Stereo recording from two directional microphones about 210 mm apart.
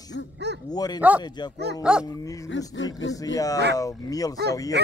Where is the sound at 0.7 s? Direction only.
20° left (ahead or behind).